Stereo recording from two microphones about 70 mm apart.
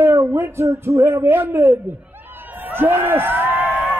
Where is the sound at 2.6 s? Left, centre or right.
Right.